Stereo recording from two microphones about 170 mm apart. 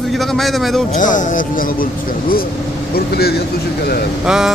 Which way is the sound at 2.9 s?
70° left (ahead or behind).